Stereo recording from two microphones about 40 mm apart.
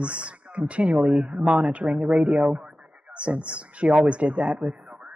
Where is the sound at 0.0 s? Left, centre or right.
Right.